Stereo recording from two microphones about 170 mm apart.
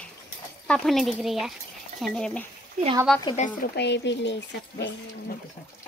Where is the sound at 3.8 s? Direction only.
90° left.